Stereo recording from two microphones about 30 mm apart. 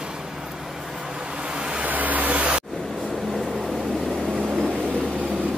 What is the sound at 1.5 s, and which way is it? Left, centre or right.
Vehicle, right.